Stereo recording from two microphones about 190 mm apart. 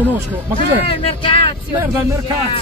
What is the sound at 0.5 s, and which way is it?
Speech, 30° left (ahead or behind).